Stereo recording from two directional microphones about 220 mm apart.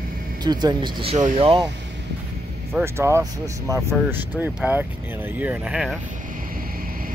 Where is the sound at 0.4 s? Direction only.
20° right (ahead or behind).